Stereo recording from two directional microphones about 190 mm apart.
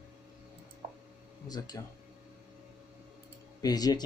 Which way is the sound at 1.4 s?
20° left (ahead or behind).